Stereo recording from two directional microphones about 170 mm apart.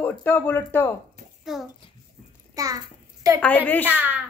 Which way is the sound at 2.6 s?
20° right (ahead or behind).